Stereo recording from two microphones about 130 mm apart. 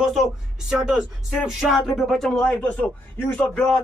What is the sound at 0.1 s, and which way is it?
A man's voice, centre (ahead or behind).